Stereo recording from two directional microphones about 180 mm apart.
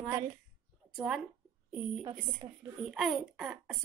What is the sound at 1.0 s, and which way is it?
Speech, centre (ahead or behind).